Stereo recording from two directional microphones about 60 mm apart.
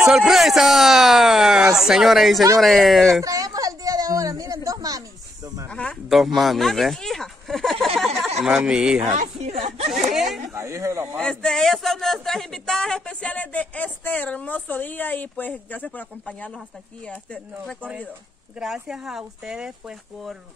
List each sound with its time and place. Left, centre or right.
0.3 s speech: centre
3.3 s a sound: right
5.7 s speech: centre
6.0 s a sound: centre
8.5 s speech: centre
9.9 s a sound: centre
10.5 s speech: right
11.1 s speech: centre
18.6 s speech: centre